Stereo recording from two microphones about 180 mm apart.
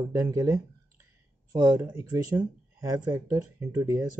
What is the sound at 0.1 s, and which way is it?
Speech, 20° right (ahead or behind).